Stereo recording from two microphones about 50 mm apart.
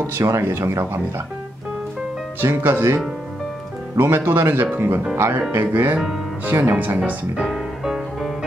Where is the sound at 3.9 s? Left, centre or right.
Right.